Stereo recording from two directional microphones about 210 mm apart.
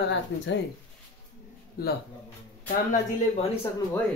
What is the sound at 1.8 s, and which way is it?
Speech, 45° left (ahead or behind).